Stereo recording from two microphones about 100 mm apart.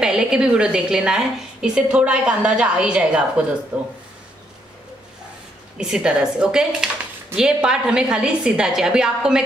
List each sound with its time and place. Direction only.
0.0 s a woman's voice: 10° right (ahead or behind)
5.8 s a woman's voice: 5° right (ahead or behind)